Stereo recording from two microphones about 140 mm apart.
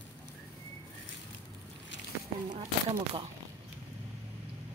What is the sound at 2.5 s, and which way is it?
Speech, 45° right (ahead or behind).